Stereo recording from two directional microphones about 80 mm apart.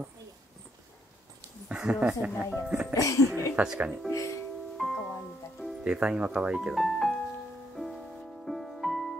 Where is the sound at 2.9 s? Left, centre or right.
Left.